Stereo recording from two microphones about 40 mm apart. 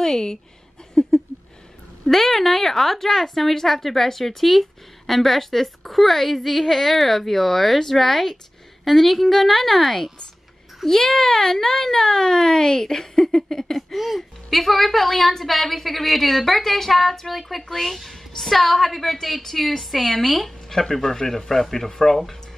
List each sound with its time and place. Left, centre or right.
0.0 s a woman's voice: centre
1.0 s a sound: centre
2.0 s a woman's voice: centre
13.9 s a woman's voice: centre